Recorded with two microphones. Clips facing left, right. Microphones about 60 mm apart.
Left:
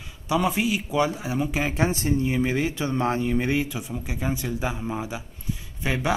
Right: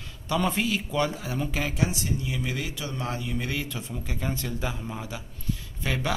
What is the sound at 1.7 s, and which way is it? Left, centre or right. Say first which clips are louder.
Speech: left 5 dB; left.